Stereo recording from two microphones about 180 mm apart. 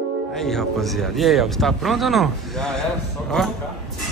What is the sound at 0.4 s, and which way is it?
Speech, centre (ahead or behind).